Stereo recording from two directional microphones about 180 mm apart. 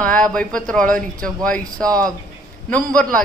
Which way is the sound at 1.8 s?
20° right (ahead or behind).